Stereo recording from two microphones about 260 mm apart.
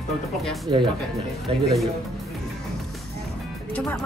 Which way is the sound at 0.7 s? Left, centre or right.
Centre.